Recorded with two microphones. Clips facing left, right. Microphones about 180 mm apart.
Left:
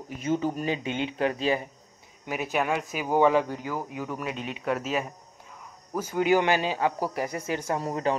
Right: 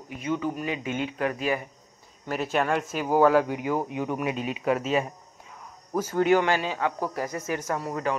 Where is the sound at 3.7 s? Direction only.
25° right (ahead or behind); by 5.0 s centre (ahead or behind).